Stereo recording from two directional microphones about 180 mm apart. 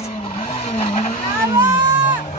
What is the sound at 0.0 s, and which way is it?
Vehicle, 30° left (ahead or behind).